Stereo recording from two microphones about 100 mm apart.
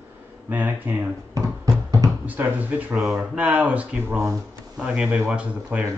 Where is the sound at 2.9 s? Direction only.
Centre (ahead or behind).